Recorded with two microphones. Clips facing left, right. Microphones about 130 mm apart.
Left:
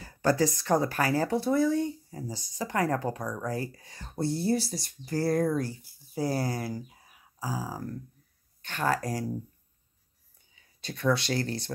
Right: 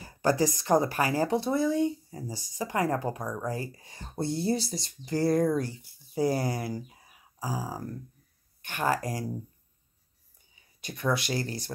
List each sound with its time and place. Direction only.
0.0 s speech: 15° right (ahead or behind)
10.5 s speech: 15° right (ahead or behind)